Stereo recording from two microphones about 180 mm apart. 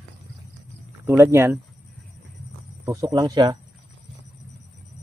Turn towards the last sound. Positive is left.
turn(degrees=-25)  # may be behind; listen again after turning